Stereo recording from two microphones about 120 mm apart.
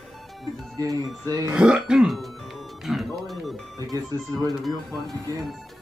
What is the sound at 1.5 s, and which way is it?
Speech, 5° right (ahead or behind).